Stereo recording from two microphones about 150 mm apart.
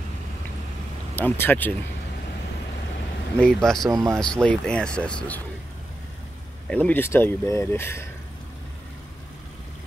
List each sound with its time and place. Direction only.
1.1 s speech: 15° left (ahead or behind)
3.3 s speech: 5° left (ahead or behind)
3.9 s speech: 25° right (ahead or behind)
4.2 s speech: 5° left (ahead or behind)
6.7 s speech: 10° left (ahead or behind)